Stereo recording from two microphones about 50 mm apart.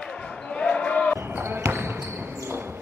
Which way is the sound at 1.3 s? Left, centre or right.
Right.